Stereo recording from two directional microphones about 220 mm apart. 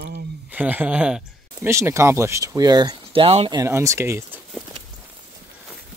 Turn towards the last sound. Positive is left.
turn(degrees=-10)  # may be behind; listen again after turning